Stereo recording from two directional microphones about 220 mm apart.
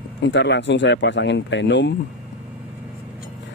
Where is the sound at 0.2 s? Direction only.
55° left (ahead or behind).